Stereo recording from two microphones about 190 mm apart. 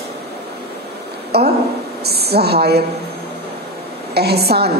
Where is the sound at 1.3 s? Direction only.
60° right (ahead or behind).